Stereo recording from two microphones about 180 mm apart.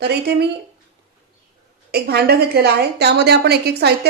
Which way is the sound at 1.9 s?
60° right (ahead or behind).